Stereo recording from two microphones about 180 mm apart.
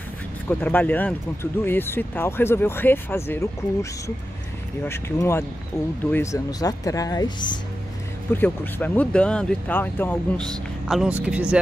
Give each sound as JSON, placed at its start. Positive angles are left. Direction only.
{"t": 0.5, "sound": "speech", "side_deg": 10}
{"t": 4.8, "sound": "speech", "side_deg": 15}
{"t": 8.3, "sound": "speech", "side_deg": 10}